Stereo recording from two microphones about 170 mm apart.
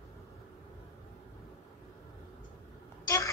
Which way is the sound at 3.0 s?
20° left (ahead or behind).